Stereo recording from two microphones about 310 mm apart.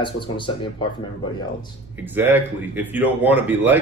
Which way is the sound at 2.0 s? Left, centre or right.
Centre.